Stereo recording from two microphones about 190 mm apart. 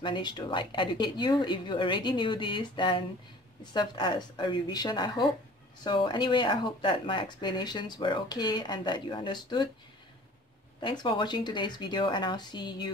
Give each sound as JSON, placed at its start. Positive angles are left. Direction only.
{"t": 0.0, "sound": "speech", "side_deg": 25}
{"t": 10.8, "sound": "speech", "side_deg": 25}